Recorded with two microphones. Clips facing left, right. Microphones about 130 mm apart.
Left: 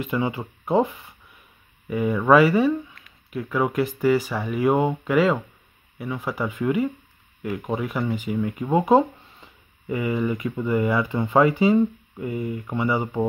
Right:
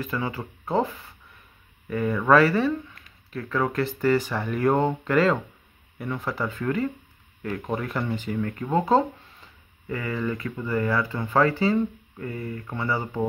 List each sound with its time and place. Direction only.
0.0 s speech: 20° left (ahead or behind)